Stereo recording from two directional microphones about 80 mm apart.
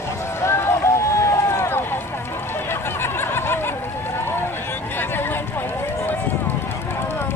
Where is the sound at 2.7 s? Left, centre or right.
Left.